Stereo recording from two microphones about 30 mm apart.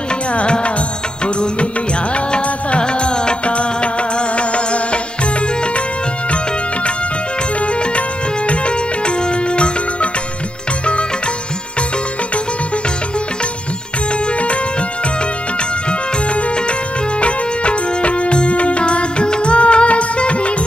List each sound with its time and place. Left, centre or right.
0.3 s music: left
1.2 s music of bollywood: left
3.4 s music: left
7.6 s music: left
15.9 s music: left